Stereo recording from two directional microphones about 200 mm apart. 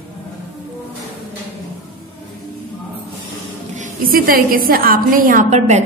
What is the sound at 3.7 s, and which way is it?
A woman's voice, 40° right (ahead or behind).